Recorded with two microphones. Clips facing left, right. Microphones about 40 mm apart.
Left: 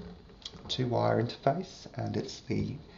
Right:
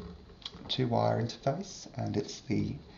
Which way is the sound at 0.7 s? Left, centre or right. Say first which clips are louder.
Right 1 dB; centre.